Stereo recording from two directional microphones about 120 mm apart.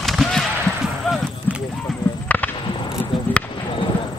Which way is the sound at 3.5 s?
45° left (ahead or behind).